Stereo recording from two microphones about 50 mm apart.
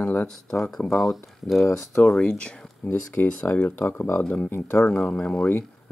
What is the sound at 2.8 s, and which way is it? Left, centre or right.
Speech, left.